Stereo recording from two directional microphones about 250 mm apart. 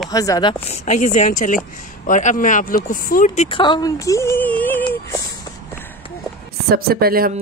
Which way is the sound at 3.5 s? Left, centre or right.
Centre.